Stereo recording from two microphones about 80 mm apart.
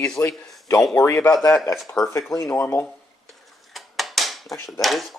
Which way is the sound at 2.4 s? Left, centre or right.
Left.